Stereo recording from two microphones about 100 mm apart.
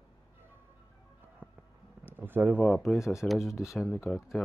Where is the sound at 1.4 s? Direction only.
20° right (ahead or behind).